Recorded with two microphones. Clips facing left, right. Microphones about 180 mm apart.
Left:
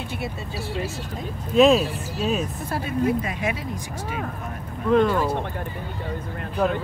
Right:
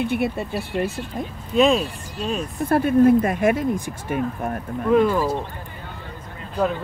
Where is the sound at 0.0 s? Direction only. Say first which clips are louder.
Right 9 dB; 60° right (ahead or behind).